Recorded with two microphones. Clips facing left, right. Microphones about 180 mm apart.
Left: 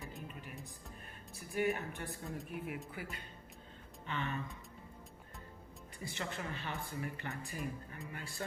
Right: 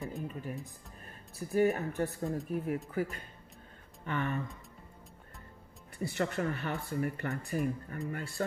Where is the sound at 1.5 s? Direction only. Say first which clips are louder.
Right 7 dB; 40° right (ahead or behind).